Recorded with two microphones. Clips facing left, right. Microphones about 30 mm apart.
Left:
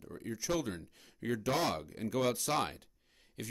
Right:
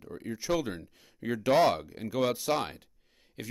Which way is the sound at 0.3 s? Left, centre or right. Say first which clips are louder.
Right 5 dB; right.